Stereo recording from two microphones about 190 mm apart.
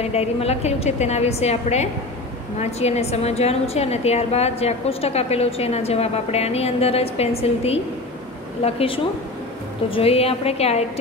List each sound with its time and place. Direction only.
0.0 s a woman's voice: 35° left (ahead or behind)